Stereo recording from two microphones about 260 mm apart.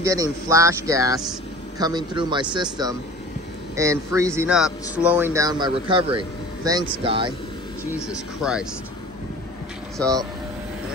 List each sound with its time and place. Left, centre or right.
0.0 s speech: centre
8.4 s speech: centre
9.9 s speech: centre